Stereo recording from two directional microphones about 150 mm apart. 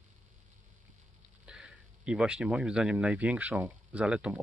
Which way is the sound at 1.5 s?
5° right (ahead or behind).